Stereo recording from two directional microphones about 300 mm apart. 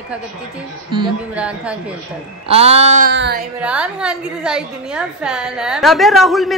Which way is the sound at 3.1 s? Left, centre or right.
Right.